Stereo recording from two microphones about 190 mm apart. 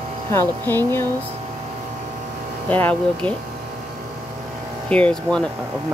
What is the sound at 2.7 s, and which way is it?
Speech, 10° left (ahead or behind).